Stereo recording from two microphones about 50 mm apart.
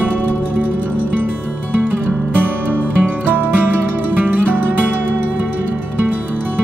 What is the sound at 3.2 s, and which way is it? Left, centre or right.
Music, right.